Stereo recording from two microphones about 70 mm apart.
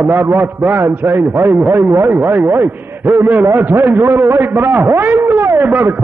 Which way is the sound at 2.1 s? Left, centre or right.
Right.